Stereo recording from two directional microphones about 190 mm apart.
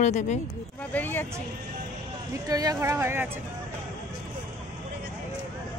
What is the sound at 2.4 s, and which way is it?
Speech, 20° right (ahead or behind).